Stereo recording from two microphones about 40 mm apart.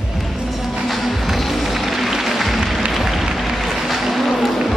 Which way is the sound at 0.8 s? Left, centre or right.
Centre.